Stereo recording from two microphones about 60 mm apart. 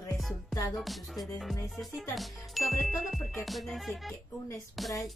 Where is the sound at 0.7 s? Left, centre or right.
Centre.